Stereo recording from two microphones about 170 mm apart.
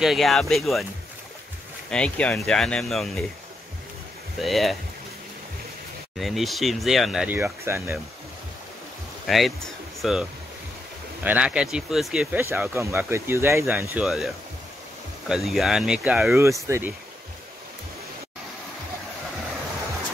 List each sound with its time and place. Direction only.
0.0 s speech: centre (ahead or behind)
1.9 s speech: 5° left (ahead or behind)
4.4 s speech: centre (ahead or behind)
6.1 s speech: centre (ahead or behind)
9.3 s speech: centre (ahead or behind)
11.2 s speech: 5° right (ahead or behind)
13.9 s speech: centre (ahead or behind)
16.3 s speech: 15° right (ahead or behind)